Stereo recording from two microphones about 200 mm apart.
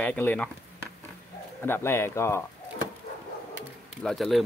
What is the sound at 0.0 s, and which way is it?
Speech, 10° left (ahead or behind).